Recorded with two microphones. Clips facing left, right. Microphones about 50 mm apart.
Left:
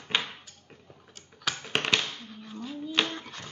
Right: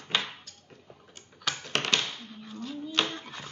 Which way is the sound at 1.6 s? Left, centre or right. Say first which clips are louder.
Left 1 dB; centre.